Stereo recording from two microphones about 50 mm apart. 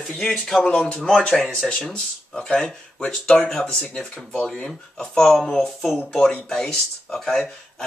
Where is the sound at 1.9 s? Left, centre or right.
Centre.